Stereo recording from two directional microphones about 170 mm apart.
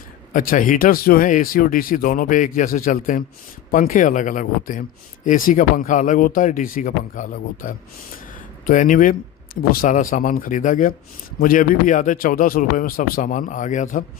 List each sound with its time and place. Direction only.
0.3 s speech: 55° left (ahead or behind)